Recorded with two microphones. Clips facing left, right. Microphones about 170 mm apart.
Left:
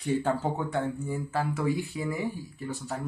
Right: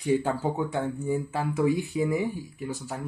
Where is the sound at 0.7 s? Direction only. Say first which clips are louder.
Right 3 dB; 15° right (ahead or behind).